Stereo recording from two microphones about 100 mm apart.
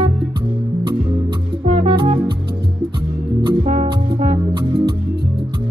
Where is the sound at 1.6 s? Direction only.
75° right (ahead or behind).